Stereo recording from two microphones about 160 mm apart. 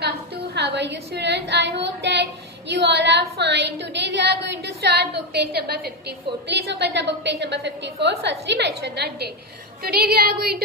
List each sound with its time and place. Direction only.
0.6 s a woman's voice: 90° right
9.8 s music: 75° right (ahead or behind)